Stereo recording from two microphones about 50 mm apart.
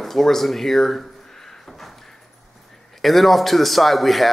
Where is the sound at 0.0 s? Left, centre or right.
Centre.